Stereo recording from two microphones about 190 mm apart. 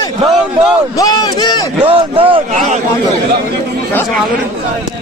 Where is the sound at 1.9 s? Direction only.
30° right (ahead or behind).